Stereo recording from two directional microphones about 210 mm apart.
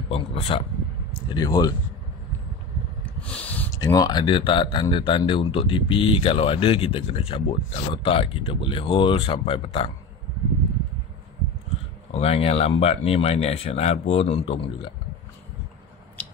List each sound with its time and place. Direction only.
0.1 s speech: 30° left (ahead or behind)
1.3 s speech: 20° left (ahead or behind)
3.3 s speech: 5° left (ahead or behind); by 9.8 s 25° left (ahead or behind)
12.1 s speech: 30° left (ahead or behind)